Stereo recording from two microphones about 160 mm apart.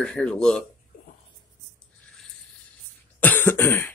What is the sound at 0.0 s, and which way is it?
Speech, 5° left (ahead or behind).